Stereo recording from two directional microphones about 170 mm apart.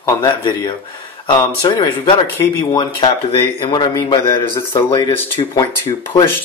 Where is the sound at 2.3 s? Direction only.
20° left (ahead or behind).